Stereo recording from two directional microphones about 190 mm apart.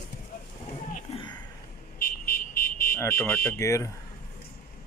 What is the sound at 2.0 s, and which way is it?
Vehicle, 50° left (ahead or behind).